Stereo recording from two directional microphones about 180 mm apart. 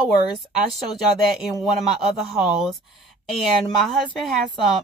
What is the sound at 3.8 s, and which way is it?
Speech, centre (ahead or behind).